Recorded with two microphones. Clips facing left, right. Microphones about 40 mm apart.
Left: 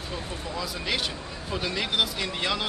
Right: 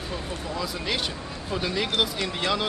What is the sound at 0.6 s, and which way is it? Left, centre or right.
Speech, centre.